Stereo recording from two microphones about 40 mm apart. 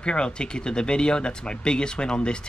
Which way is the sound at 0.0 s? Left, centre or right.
Left.